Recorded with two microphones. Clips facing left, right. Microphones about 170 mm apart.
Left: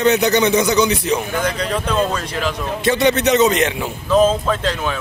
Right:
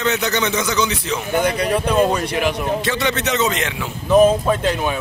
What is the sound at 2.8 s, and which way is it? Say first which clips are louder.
Speech: left 6 dB; 15° left (ahead or behind).